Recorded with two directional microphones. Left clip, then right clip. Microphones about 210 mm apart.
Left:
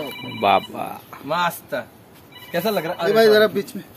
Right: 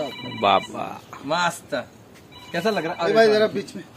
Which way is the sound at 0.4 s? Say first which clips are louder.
Left 1 dB; 10° left (ahead or behind).